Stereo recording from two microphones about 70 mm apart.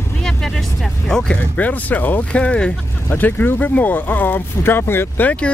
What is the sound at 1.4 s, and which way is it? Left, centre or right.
Speech, left.